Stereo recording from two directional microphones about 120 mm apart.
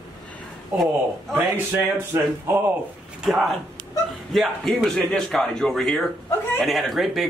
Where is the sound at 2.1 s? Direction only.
20° right (ahead or behind).